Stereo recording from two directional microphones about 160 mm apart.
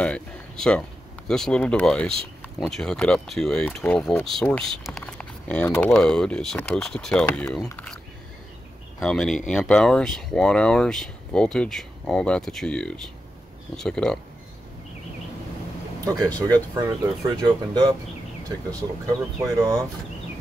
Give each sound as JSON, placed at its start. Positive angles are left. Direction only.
{"t": 0.0, "sound": "speech", "side_deg": 5}
{"t": 9.0, "sound": "speech", "side_deg": 5}
{"t": 16.7, "sound": "speech", "side_deg": -25}